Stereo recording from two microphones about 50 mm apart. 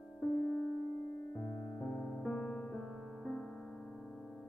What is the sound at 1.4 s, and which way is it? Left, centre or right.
Music, centre.